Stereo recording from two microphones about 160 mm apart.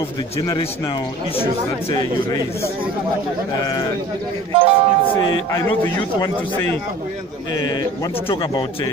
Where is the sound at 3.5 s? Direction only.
25° left (ahead or behind).